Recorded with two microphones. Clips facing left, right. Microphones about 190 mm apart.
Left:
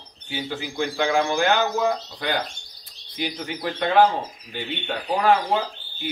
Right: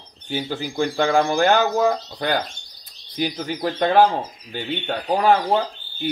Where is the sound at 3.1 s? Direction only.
40° right (ahead or behind).